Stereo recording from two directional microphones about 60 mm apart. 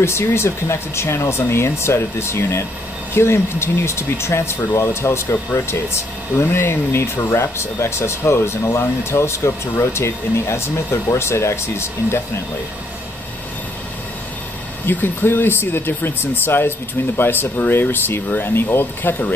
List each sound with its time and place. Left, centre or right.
0.0 s speech: left
6.5 s speech: left
14.9 s speech: left